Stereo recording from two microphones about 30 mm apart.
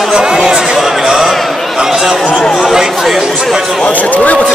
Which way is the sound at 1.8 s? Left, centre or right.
Right.